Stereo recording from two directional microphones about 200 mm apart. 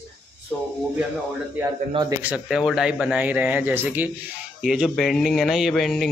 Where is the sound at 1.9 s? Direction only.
20° right (ahead or behind).